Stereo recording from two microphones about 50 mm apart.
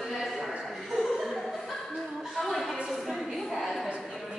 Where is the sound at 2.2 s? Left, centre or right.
Centre.